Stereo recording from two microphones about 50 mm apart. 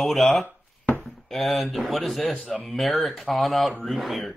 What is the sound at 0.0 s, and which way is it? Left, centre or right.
A man's voice, centre.